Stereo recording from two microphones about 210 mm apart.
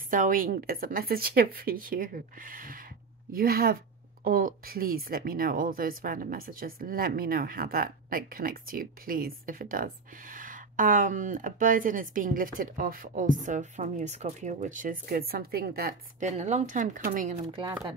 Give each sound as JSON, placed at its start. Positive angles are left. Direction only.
{"t": 0.1, "sound": "speech", "side_deg": -40}
{"t": 16.3, "sound": "speech", "side_deg": -35}
{"t": 17.5, "sound": "speech", "side_deg": -25}